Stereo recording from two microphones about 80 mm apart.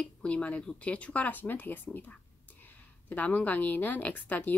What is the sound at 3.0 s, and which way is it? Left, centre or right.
A woman's voice, centre.